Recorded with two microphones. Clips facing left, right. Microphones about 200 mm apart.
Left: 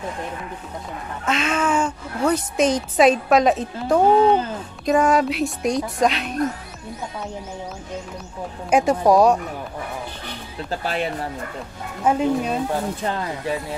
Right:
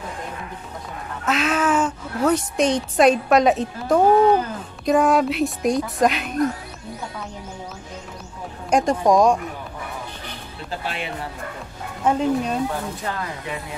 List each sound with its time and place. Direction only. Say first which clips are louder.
1.2 s a woman's voice: right 1 dB; centre (ahead or behind)
4.2 s speech: even; 25° left (ahead or behind)
4.8 s a woman's voice: even; centre (ahead or behind)
8.6 s speech: left 1 dB; 5° left (ahead or behind)
10.8 s speech: left 6 dB; 40° left (ahead or behind)
12.0 s speech: left 1 dB; 5° left (ahead or behind)
13.0 s speech: left 4 dB; 25° left (ahead or behind)